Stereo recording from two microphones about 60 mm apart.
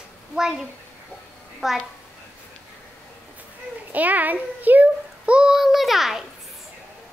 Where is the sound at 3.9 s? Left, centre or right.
Right.